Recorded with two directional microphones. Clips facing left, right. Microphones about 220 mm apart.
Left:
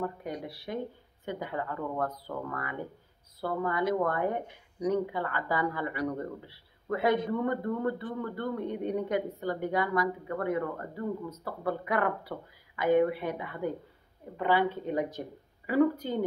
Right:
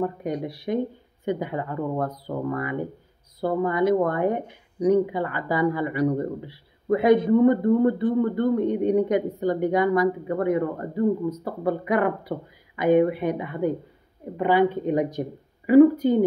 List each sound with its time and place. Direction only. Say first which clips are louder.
0.0 s speech: right 8 dB; 20° right (ahead or behind)